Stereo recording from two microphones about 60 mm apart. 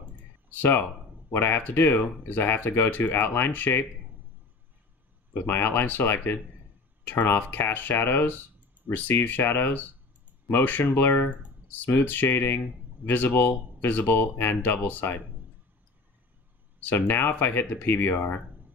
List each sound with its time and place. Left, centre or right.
0.1 s a sound: left
1.3 s speech: left
5.3 s speech: left
16.9 s speech: left